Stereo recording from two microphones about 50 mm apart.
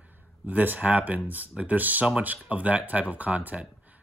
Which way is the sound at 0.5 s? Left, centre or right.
Right.